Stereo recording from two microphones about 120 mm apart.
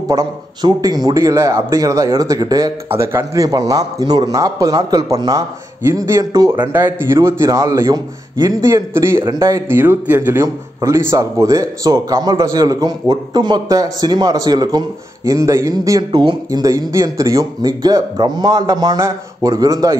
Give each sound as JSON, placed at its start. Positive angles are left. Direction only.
{"t": 0.1, "sound": "a man's voice", "side_deg": -35}
{"t": 6.7, "sound": "a man's voice", "side_deg": -20}
{"t": 16.0, "sound": "a man's voice", "side_deg": -40}